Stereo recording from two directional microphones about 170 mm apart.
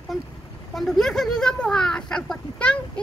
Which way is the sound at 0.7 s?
Centre (ahead or behind).